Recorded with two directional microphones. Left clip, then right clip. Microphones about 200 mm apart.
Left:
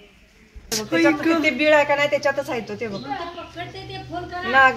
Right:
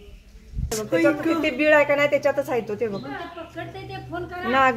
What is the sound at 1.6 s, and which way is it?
A woman's voice, 50° right (ahead or behind).